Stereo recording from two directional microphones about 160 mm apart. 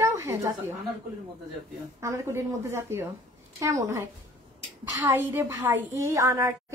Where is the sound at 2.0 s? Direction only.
15° right (ahead or behind).